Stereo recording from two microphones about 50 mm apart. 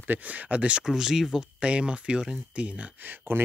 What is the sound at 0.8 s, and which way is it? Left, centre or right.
Speech, centre.